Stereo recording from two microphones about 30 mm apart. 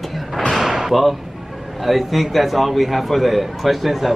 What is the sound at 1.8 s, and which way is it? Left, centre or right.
A man's voice, centre.